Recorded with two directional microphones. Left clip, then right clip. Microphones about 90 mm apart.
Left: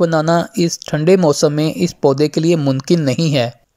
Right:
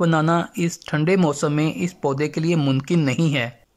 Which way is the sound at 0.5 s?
25° left (ahead or behind).